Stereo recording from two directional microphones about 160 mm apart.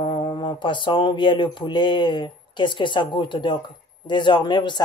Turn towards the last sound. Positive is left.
turn(degrees=30)  # may be behind; listen again after turning